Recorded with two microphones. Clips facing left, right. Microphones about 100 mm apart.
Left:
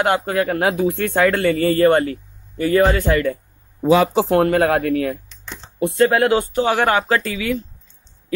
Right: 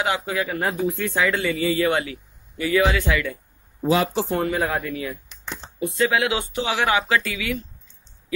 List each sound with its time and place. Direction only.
0.0 s speech: 55° left (ahead or behind)
4.3 s speech: 70° left (ahead or behind); by 7.6 s 35° left (ahead or behind)